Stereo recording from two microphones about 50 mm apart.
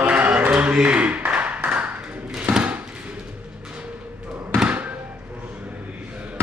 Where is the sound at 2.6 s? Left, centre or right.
Right.